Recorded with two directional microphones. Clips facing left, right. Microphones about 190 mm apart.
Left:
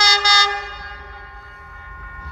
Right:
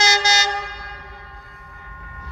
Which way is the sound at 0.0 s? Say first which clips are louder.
Right 1 dB; 25° right (ahead or behind).